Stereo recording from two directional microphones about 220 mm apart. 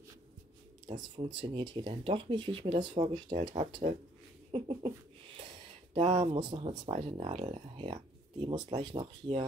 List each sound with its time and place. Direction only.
0.9 s speech: 30° right (ahead or behind)
4.5 s a sound: 25° right (ahead or behind)
5.9 s speech: 30° right (ahead or behind)